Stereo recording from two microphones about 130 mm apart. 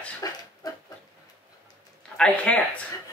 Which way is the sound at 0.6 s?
30° left (ahead or behind).